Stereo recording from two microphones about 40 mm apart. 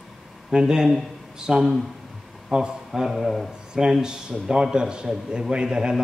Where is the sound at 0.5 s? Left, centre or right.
Centre.